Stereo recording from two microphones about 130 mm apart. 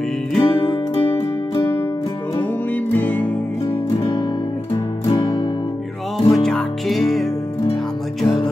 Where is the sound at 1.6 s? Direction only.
20° left (ahead or behind).